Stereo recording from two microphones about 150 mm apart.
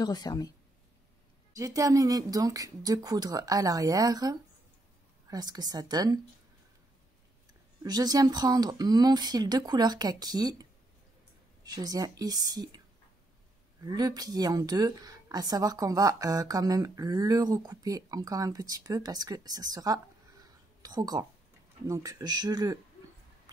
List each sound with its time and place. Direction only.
0.0 s speech: 25° left (ahead or behind)
1.5 s speech: 20° right (ahead or behind)
7.8 s speech: 25° right (ahead or behind)
13.8 s speech: 25° right (ahead or behind)